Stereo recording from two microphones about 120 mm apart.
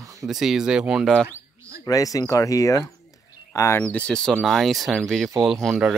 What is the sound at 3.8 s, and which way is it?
Speech, 10° left (ahead or behind).